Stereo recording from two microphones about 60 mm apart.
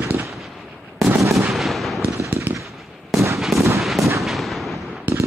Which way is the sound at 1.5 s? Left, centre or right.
Centre.